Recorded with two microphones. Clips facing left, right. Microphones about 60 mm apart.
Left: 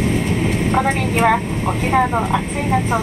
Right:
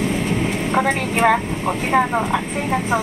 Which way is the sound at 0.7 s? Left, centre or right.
Centre.